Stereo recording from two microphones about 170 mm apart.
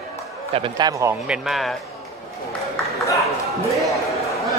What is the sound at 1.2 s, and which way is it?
Speech, centre (ahead or behind).